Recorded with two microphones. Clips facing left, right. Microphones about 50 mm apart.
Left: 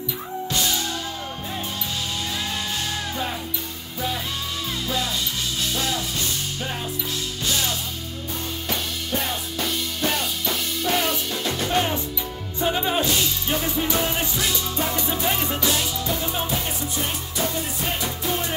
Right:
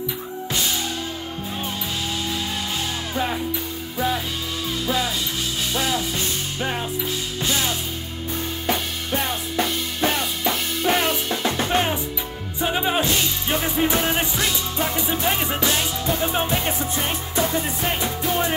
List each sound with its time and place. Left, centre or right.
4.8 s music: centre
9.9 s music: right
15.6 s music: right